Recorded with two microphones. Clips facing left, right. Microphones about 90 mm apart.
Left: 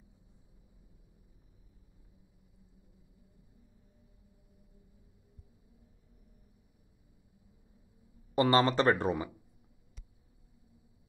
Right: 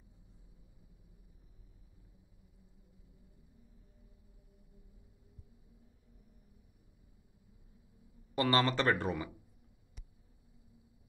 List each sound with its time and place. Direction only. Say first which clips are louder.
8.4 s speech: left 4 dB; 20° left (ahead or behind)